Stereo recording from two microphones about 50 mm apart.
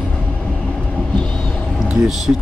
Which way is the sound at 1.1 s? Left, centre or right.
Centre.